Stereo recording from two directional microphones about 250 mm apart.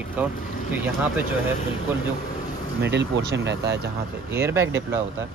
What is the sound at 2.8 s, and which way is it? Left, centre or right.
Speech, right.